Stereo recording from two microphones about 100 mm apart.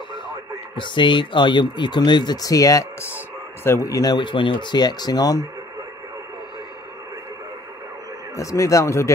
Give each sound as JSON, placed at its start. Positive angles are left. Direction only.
{"t": 0.7, "sound": "speech", "side_deg": 55}
{"t": 8.4, "sound": "speech", "side_deg": 30}